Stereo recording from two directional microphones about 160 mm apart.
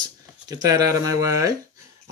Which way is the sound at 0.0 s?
25° right (ahead or behind).